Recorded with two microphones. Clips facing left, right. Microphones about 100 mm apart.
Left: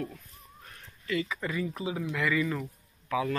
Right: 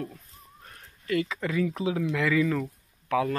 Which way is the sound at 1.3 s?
90° right.